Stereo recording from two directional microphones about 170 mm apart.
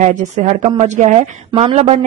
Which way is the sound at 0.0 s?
45° right (ahead or behind).